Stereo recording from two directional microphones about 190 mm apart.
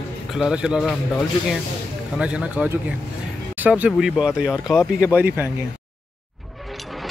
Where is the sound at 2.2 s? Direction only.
5° right (ahead or behind).